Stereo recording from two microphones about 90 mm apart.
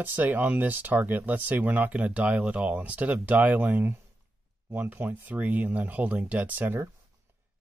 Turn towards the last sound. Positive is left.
turn(degrees=-25)  # may be behind; listen again after turning